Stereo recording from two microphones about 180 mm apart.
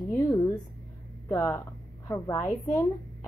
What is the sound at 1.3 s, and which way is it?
A woman's voice, 20° left (ahead or behind).